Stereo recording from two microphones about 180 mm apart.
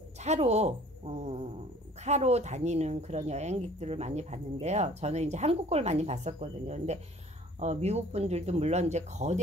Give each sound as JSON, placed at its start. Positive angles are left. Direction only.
{"t": 0.2, "sound": "speech", "side_deg": -40}